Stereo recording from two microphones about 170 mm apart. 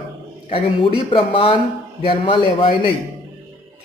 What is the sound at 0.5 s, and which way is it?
Speech, 30° left (ahead or behind).